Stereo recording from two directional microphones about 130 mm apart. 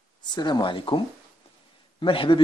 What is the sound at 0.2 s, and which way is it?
Speech, 35° left (ahead or behind).